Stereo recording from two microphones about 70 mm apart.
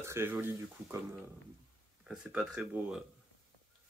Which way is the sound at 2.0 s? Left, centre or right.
Centre.